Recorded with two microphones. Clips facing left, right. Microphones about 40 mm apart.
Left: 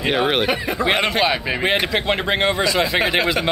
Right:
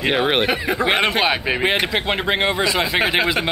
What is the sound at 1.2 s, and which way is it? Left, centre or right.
Speech, right.